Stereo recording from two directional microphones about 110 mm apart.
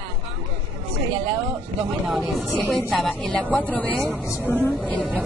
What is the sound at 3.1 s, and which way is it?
Speech, 10° left (ahead or behind).